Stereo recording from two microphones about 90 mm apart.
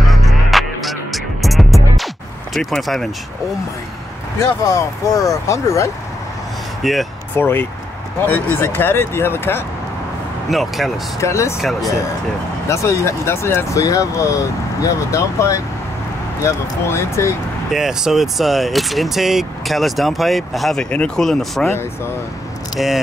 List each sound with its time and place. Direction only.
0.0 s music: centre (ahead or behind)
2.5 s speech: centre (ahead or behind)
4.6 s speech: 35° left (ahead or behind)
6.8 s speech: centre (ahead or behind)
7.3 s speech: 20° left (ahead or behind)
10.5 s speech: centre (ahead or behind)
11.1 s speech: 35° left (ahead or behind)
12.6 s speech: 35° left (ahead or behind)
17.6 s speech: 5° right (ahead or behind)
22.8 s speech: centre (ahead or behind)